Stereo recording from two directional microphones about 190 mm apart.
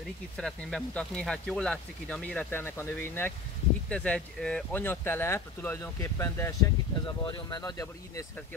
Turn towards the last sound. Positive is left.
turn(degrees=20)  # may be behind; listen again after turning